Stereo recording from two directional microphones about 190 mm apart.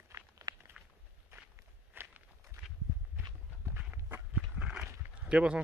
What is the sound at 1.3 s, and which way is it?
Walk, 10° right (ahead or behind).